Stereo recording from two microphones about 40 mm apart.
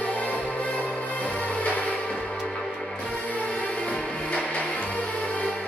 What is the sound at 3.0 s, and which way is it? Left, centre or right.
Music, left.